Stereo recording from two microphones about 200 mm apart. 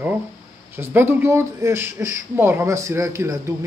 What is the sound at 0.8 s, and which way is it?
Speech, 10° right (ahead or behind).